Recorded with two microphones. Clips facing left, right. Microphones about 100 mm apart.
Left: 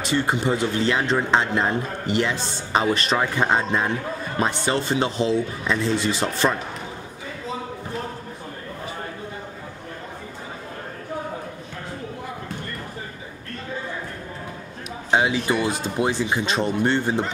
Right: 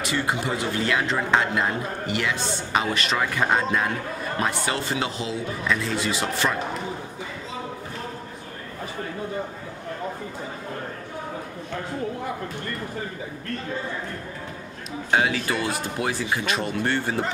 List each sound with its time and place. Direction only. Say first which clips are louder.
0.0 s speech: left 3 dB; 30° left (ahead or behind)
3.3 s speech: left 1 dB; 25° left (ahead or behind)
15.0 s speech: left 2 dB; 20° left (ahead or behind)